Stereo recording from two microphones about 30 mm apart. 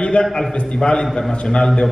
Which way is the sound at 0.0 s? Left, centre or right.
Left.